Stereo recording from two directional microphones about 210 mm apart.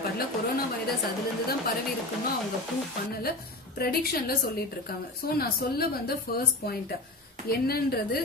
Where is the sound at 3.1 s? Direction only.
45° left (ahead or behind).